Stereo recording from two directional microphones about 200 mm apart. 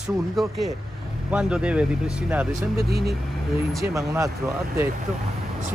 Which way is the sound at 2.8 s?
50° right (ahead or behind).